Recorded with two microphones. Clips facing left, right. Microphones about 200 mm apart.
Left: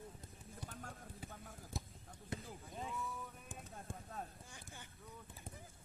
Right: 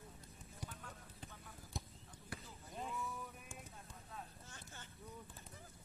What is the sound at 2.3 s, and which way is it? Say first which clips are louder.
Basketball bounce: left 5 dB; 20° left (ahead or behind).